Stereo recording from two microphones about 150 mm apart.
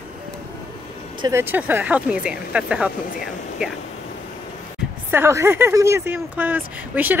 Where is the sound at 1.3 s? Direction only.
15° right (ahead or behind).